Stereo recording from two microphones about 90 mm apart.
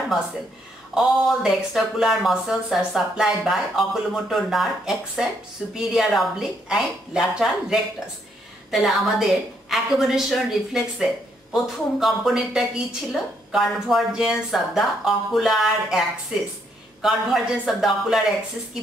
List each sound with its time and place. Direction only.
0.9 s a woman's voice: centre (ahead or behind)
17.0 s a woman's voice: 5° right (ahead or behind)